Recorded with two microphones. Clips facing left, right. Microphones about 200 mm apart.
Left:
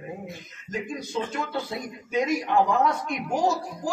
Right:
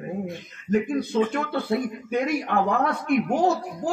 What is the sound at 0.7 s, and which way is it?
Speech, 60° right (ahead or behind).